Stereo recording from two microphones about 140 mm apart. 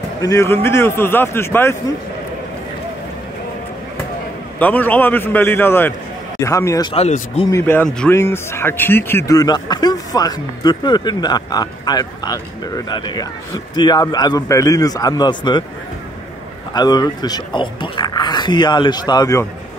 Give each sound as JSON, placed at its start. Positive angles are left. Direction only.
{"t": 0.2, "sound": "a man's voice", "side_deg": 20}
{"t": 4.6, "sound": "a man's voice", "side_deg": 10}
{"t": 6.9, "sound": "speech", "side_deg": 45}
{"t": 7.5, "sound": "a man's voice", "side_deg": 15}
{"t": 9.3, "sound": "speech", "side_deg": 30}
{"t": 16.7, "sound": "speech", "side_deg": 30}